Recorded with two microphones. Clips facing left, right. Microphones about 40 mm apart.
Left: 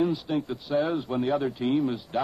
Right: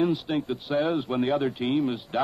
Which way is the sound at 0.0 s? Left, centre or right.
Right.